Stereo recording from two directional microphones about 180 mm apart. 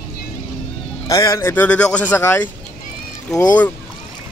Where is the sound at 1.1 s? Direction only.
20° left (ahead or behind).